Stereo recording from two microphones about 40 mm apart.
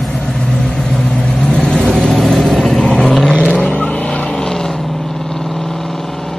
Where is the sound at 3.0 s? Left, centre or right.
Centre.